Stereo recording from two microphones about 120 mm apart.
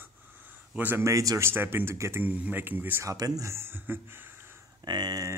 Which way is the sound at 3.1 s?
30° right (ahead or behind).